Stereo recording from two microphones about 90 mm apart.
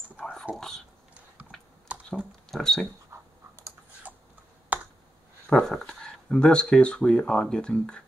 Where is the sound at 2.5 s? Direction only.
5° left (ahead or behind).